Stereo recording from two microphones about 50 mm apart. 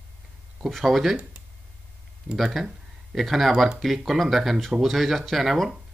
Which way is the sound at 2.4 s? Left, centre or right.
Centre.